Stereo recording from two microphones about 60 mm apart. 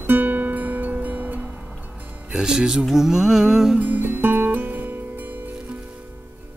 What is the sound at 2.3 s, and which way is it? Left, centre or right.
Music, centre.